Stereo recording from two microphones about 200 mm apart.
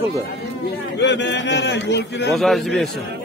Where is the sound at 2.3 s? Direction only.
Centre (ahead or behind).